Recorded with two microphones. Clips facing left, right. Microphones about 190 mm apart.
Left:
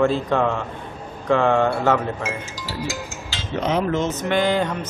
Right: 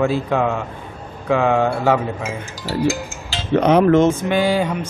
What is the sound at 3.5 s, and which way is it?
Dishes, 65° right (ahead or behind).